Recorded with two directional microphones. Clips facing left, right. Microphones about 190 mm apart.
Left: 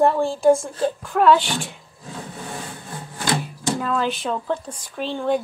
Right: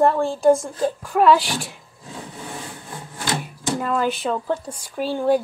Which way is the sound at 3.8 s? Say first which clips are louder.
Right 3 dB; 5° right (ahead or behind).